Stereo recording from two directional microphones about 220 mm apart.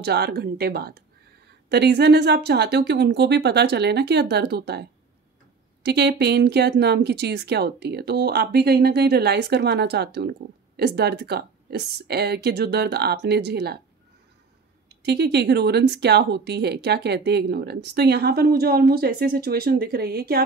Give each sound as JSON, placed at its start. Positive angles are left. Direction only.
{"t": 0.0, "sound": "a woman's voice", "side_deg": -50}
{"t": 15.0, "sound": "a woman's voice", "side_deg": -50}